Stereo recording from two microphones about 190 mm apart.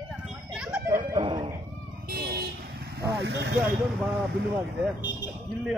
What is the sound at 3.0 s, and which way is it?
Speech, 65° right (ahead or behind).